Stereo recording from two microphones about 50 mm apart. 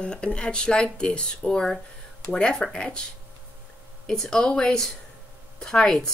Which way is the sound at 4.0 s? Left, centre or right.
Centre.